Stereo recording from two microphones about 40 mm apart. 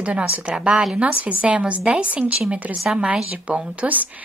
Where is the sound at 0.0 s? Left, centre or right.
Right.